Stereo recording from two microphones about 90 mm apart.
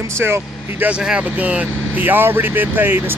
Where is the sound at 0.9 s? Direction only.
10° right (ahead or behind).